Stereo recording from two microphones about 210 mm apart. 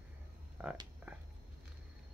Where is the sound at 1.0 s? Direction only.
5° right (ahead or behind).